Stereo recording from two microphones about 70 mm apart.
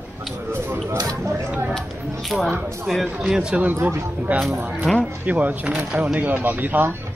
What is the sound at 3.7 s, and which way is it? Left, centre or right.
Speech, right.